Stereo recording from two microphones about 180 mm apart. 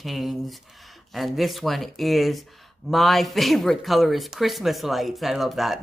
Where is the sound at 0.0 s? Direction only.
Centre (ahead or behind).